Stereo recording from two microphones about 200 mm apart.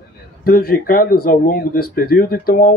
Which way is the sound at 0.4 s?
50° left (ahead or behind).